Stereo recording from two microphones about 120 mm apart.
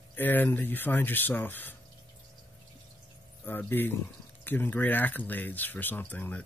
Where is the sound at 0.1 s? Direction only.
15° left (ahead or behind).